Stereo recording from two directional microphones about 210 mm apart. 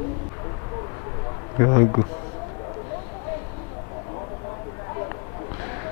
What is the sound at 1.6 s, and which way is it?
Speech, 20° left (ahead or behind).